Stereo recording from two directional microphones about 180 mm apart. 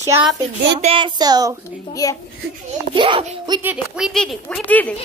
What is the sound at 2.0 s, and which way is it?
Speech, 20° left (ahead or behind).